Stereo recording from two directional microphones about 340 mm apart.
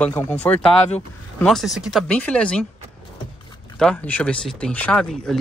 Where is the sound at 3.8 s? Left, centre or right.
Centre.